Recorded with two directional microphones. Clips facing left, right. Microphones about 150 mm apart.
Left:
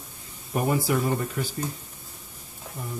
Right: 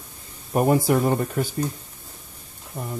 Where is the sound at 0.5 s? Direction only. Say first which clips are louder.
Right 5 dB; 45° right (ahead or behind).